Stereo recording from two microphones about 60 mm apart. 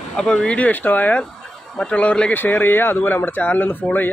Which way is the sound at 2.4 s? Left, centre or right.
Left.